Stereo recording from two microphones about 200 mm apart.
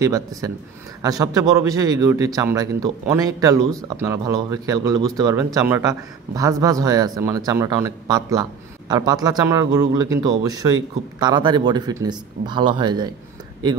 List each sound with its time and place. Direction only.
0.0 s a man's voice: 15° right (ahead or behind)